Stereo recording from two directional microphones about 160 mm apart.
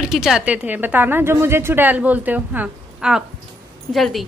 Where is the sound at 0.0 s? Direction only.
5° right (ahead or behind).